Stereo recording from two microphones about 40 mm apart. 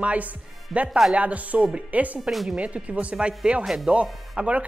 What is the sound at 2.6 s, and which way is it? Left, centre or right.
A woman's voice, right.